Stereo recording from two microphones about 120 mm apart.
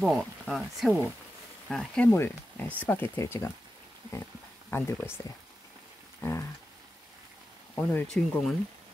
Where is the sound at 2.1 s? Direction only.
20° left (ahead or behind).